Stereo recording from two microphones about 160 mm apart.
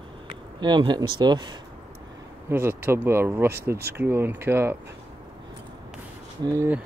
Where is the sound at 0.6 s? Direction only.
30° right (ahead or behind).